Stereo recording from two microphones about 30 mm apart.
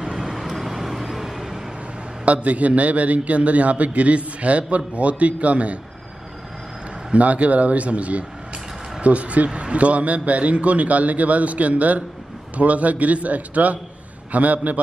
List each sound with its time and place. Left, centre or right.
0.2 s vehicle: centre
2.2 s a man's voice: right
7.2 s a man's voice: right